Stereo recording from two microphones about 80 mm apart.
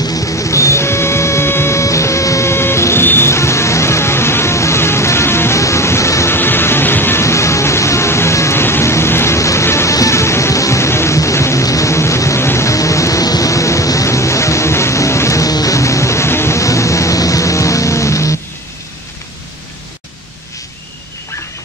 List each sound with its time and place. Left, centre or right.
0.1 s printer: left
9.9 s music: left